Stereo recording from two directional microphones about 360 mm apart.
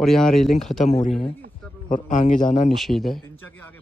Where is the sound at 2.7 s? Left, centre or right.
Centre.